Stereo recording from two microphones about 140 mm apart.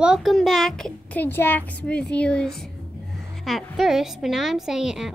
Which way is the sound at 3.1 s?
Centre (ahead or behind).